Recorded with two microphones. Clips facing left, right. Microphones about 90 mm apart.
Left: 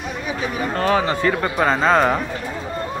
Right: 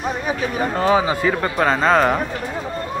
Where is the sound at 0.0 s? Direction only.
40° right (ahead or behind).